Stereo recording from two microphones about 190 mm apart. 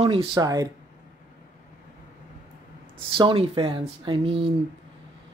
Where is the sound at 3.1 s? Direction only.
25° right (ahead or behind).